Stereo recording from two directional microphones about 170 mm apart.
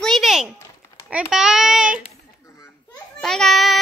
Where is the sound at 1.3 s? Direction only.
Centre (ahead or behind).